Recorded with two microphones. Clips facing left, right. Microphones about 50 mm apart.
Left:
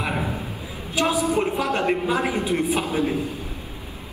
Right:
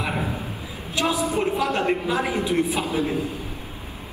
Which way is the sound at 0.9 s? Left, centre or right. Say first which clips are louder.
Left 2 dB; left.